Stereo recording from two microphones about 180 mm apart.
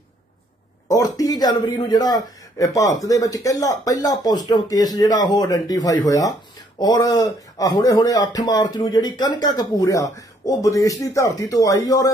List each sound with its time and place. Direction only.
0.8 s speech: 20° left (ahead or behind)